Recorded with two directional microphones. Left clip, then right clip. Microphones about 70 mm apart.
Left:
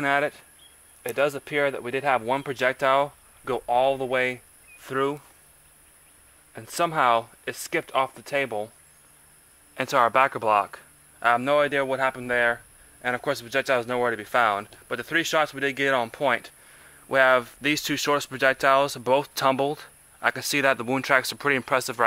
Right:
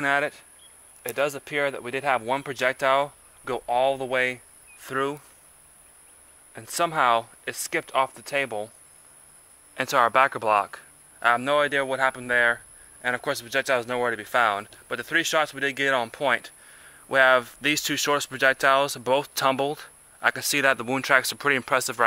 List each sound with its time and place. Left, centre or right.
0.0 s speech: right
6.5 s speech: right
9.8 s speech: right